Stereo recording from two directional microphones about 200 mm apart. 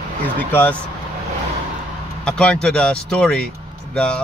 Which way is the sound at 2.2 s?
5° left (ahead or behind).